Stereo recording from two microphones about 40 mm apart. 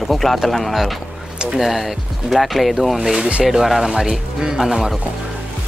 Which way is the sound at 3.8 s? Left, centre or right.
Centre.